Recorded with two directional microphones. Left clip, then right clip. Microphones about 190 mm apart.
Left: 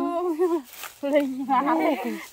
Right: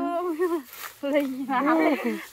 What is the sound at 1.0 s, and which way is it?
Speech, 70° left (ahead or behind).